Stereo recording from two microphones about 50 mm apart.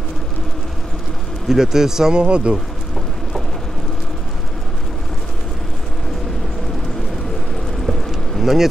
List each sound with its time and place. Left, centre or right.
1.5 s speech: centre
8.4 s bee: centre